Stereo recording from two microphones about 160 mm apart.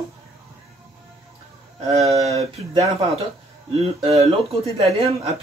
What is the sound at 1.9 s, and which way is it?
Speech, 40° right (ahead or behind).